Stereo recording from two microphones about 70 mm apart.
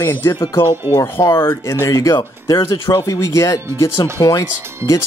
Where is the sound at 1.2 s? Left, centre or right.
Left.